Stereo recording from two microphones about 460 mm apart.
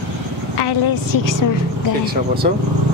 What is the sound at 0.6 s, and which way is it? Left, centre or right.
Speech, left.